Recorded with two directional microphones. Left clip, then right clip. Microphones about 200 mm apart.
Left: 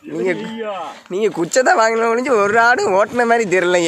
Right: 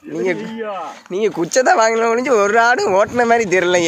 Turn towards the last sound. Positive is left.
turn(degrees=0)  # may be behind; listen again after turning